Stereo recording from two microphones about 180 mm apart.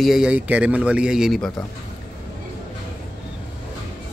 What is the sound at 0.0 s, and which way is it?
Speech, 5° right (ahead or behind).